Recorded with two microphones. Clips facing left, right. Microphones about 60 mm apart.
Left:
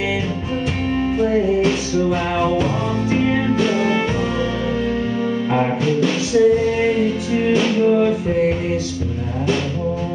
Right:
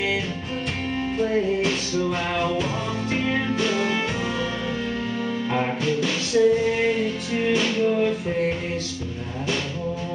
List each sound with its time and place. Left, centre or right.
1.1 s music: centre
5.5 s music: centre